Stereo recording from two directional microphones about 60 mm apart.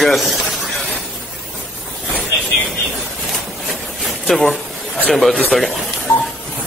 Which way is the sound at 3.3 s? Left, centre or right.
Centre.